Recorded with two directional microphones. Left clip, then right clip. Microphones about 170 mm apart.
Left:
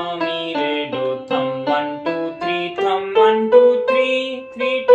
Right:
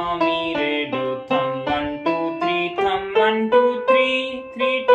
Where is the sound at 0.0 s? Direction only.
25° left (ahead or behind).